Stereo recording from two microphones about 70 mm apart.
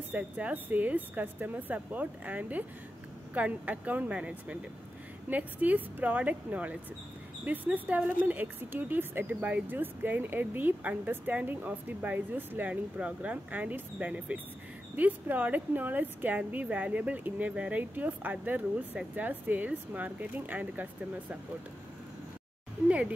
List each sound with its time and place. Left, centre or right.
0.1 s speech: right
22.8 s speech: centre